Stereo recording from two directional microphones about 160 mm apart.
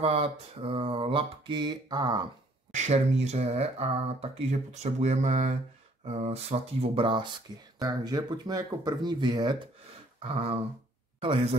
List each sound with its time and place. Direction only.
0.0 s mantra: 35° right (ahead or behind)
2.7 s speech: 45° right (ahead or behind)
6.0 s mantra: 40° right (ahead or behind)
7.8 s speech: 25° right (ahead or behind)
10.2 s mantra: 35° right (ahead or behind)